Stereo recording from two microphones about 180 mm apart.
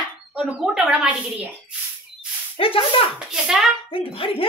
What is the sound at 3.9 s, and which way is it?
Speech, 30° left (ahead or behind).